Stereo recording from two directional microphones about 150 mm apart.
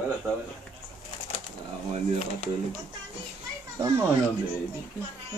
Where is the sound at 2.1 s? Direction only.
45° left (ahead or behind).